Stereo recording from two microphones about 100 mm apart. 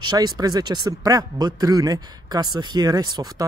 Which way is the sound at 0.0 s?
45° right (ahead or behind).